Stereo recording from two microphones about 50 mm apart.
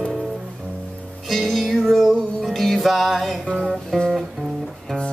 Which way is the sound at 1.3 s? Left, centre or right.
Centre.